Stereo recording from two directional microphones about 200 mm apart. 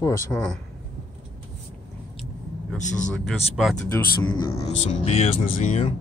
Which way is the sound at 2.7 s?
35° left (ahead or behind).